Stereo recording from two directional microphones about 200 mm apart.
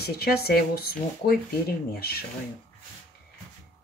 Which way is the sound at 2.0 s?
50° left (ahead or behind).